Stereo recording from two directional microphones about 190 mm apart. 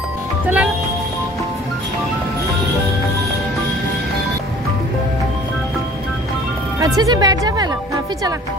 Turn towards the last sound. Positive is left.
turn(degrees=-20)  # may be behind; listen again after turning